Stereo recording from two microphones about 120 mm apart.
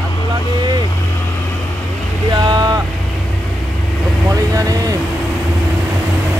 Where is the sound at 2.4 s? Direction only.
35° right (ahead or behind).